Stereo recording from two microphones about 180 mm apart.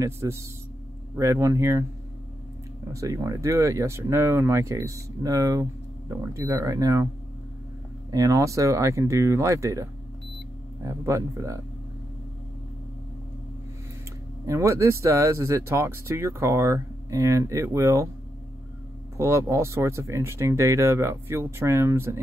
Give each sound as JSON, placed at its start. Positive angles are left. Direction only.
{"t": 0.0, "sound": "speech", "side_deg": -15}
{"t": 2.9, "sound": "speech", "side_deg": -15}
{"t": 8.1, "sound": "speech", "side_deg": -20}
{"t": 14.4, "sound": "speech", "side_deg": -15}
{"t": 19.1, "sound": "speech", "side_deg": -15}